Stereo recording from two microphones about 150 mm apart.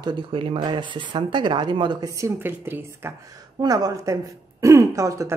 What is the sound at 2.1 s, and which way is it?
A woman's voice, 15° right (ahead or behind).